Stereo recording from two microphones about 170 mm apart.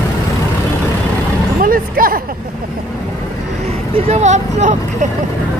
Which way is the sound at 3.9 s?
40° right (ahead or behind).